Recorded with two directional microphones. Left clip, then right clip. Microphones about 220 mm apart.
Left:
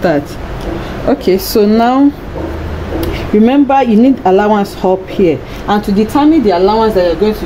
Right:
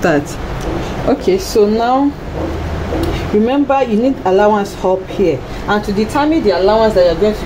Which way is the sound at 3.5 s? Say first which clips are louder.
Left 5 dB; 40° left (ahead or behind).